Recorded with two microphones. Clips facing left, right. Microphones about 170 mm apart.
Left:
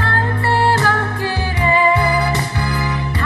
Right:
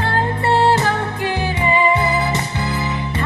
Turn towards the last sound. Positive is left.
turn(degrees=-20)  # may be behind; listen again after turning